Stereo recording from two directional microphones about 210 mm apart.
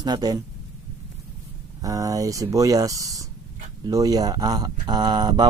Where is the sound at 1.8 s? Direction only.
15° right (ahead or behind).